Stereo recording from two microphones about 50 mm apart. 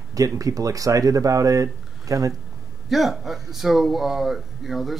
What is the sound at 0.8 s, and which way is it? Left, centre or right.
Speech, right.